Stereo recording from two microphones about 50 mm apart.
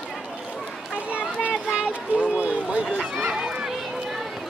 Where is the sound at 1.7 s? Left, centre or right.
Centre.